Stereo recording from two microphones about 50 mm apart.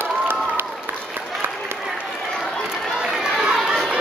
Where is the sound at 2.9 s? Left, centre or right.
Centre.